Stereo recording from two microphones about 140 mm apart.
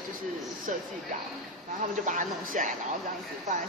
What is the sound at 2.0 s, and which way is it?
Speech, 70° right (ahead or behind).